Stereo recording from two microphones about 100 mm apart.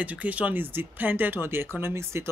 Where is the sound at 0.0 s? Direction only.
15° right (ahead or behind).